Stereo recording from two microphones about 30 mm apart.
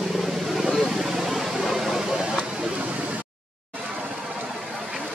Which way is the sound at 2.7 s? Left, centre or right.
Right.